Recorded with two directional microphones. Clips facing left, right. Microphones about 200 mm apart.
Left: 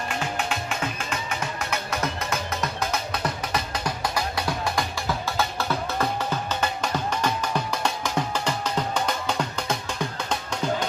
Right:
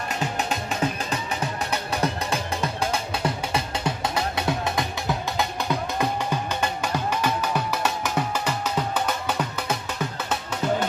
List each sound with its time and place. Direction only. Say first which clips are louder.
0.4 s music: right 3 dB; 40° right (ahead or behind); by 10.9 s 5° right (ahead or behind)